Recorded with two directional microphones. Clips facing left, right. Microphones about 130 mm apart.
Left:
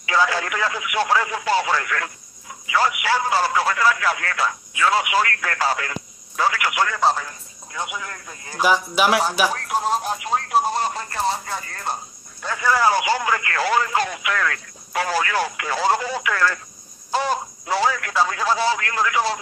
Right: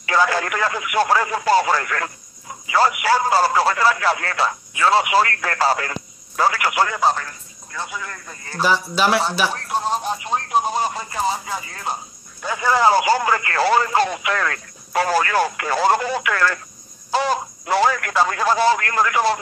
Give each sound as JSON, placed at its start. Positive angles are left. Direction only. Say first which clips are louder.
{"t": 0.0, "sound": "speech", "louder": "right 2 dB", "side_deg": -50}
{"t": 7.0, "sound": "a man's voice", "louder": "right 1 dB", "side_deg": 0}
{"t": 7.2, "sound": "a man's voice", "louder": "even", "side_deg": 15}
{"t": 12.5, "sound": "speech", "louder": "right 3 dB", "side_deg": -25}
{"t": 13.0, "sound": "speech", "louder": "right 3 dB", "side_deg": -40}
{"t": 17.1, "sound": "speech", "louder": "right 2 dB", "side_deg": -90}